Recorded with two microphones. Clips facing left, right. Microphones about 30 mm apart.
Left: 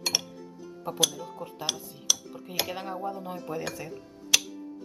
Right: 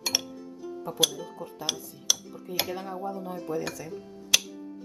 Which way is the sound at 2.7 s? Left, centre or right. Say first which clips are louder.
Even; left.